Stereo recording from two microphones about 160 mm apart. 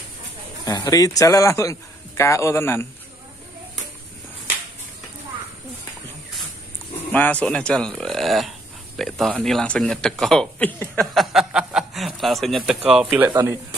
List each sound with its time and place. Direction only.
0.7 s a man's voice: 20° left (ahead or behind)
7.1 s speech: 10° left (ahead or behind)
12.9 s speech: 10° right (ahead or behind)